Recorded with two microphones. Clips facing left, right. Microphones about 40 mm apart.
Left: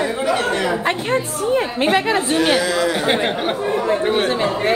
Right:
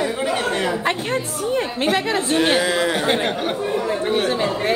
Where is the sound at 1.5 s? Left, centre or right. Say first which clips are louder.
Left 3 dB; centre.